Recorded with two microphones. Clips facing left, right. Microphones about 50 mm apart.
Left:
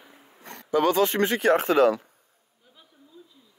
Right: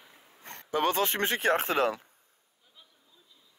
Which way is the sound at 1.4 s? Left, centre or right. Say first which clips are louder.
Left 6 dB; left.